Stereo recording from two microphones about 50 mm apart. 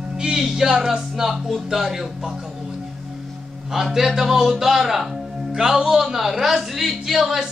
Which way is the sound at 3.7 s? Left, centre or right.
Centre.